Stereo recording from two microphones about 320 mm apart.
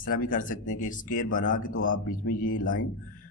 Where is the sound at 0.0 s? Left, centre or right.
Left.